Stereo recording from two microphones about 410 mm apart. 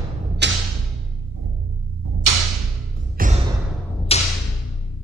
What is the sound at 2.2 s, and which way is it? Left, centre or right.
Music, right.